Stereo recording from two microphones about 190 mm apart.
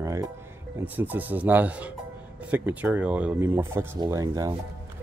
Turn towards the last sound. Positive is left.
turn(degrees=-15)  # may be behind; listen again after turning